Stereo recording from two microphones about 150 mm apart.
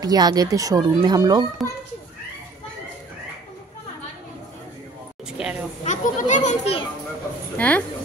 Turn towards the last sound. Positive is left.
turn(degrees=10)  # may be behind; listen again after turning